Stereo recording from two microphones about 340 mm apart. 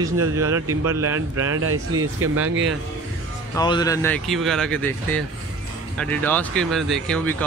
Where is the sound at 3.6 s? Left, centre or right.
Centre.